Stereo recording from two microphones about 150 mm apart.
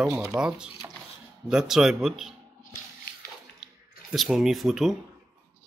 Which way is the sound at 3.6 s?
Centre (ahead or behind).